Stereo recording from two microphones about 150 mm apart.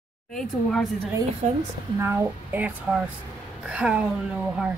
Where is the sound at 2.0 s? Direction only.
15° right (ahead or behind).